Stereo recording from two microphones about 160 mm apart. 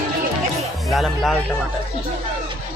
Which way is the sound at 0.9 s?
Centre (ahead or behind).